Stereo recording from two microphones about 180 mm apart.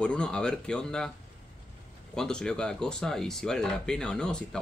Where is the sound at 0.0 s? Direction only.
5° left (ahead or behind).